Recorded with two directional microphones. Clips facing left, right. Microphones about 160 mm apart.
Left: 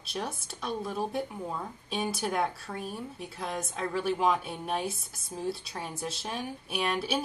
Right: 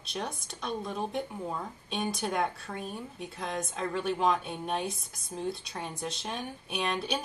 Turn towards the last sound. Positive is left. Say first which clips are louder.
# left 2 dB
turn(degrees=5)  # may be behind; listen again after turning